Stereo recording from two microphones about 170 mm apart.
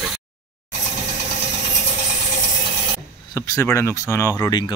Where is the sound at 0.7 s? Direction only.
45° left (ahead or behind).